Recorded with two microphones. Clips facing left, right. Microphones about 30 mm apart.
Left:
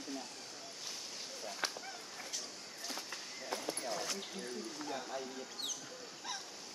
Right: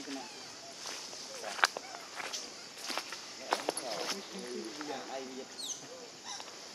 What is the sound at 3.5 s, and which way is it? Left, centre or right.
Basketball bounce, right.